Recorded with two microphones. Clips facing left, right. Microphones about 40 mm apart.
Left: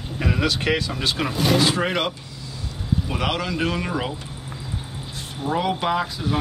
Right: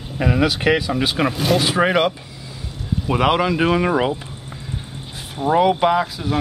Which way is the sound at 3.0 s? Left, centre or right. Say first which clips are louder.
Right 11 dB; right.